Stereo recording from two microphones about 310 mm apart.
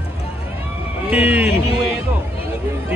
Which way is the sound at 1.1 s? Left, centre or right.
Centre.